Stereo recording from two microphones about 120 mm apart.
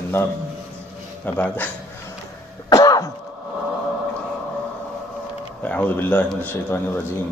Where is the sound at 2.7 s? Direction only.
30° left (ahead or behind).